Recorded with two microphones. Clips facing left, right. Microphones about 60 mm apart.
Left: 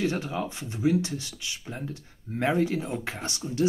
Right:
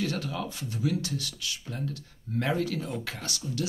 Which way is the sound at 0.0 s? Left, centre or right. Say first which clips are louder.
Left 3 dB; left.